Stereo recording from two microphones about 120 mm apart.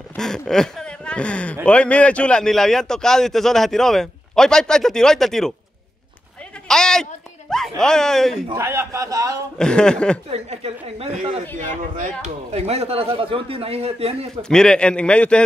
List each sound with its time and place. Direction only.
0.2 s speech: 5° left (ahead or behind)
6.7 s a sound: 5° left (ahead or behind)
8.5 s a man's voice: 20° right (ahead or behind)
9.6 s a man's voice: 5° left (ahead or behind)
10.3 s speech: 60° right (ahead or behind)
12.5 s speech: 60° right (ahead or behind)
14.5 s a man's voice: 5° left (ahead or behind)